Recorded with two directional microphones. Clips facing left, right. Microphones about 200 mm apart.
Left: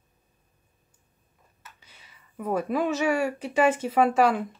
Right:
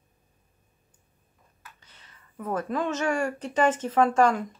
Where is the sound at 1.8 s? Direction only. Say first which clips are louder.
Even; 10° left (ahead or behind).